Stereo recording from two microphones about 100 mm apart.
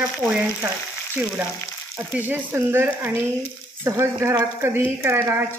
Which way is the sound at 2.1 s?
20° right (ahead or behind).